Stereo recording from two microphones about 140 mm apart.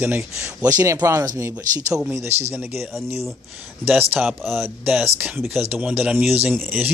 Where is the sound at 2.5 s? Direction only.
20° right (ahead or behind).